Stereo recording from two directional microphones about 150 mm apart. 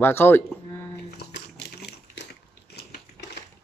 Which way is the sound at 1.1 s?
90° left.